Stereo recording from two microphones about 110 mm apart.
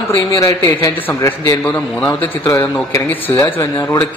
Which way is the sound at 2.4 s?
25° left (ahead or behind).